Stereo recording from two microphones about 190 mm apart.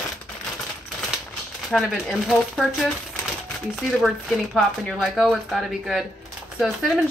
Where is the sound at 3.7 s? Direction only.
Centre (ahead or behind).